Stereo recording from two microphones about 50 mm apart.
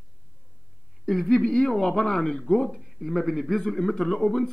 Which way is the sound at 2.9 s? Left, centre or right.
Centre.